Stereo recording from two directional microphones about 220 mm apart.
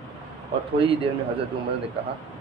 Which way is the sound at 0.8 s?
25° right (ahead or behind).